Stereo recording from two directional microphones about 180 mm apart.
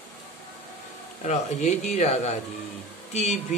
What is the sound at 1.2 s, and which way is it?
Speech, 40° left (ahead or behind).